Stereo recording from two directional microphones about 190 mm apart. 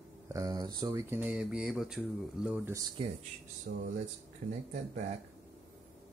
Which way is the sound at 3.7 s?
60° right (ahead or behind).